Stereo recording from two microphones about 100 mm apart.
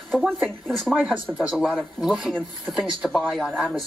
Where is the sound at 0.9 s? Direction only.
15° right (ahead or behind).